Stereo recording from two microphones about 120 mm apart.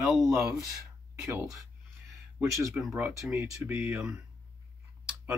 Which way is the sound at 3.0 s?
15° right (ahead or behind).